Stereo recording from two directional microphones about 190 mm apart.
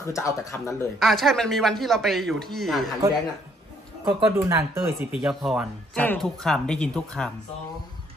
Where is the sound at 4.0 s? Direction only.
15° right (ahead or behind).